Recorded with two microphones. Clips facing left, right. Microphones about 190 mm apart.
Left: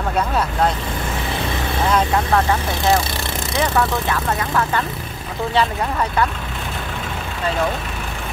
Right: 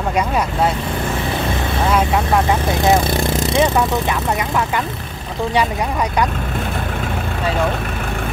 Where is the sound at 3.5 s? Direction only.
20° right (ahead or behind).